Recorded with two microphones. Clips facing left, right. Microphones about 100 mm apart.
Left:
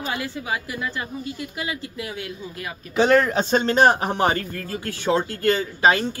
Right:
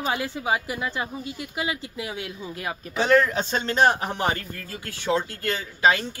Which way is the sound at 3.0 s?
55° left (ahead or behind).